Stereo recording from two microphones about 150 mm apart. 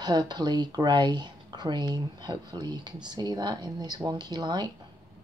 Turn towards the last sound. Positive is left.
turn(degrees=-30)  # may be behind; listen again after turning